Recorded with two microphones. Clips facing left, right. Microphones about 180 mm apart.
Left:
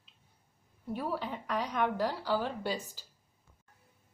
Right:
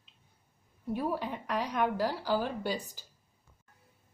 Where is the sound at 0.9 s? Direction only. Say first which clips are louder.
Right 2 dB; 10° right (ahead or behind).